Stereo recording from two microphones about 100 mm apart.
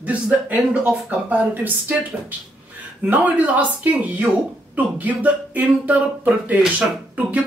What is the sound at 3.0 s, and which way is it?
Speech, 15° right (ahead or behind).